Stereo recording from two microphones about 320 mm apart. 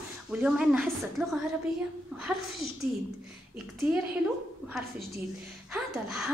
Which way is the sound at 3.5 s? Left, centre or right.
Centre.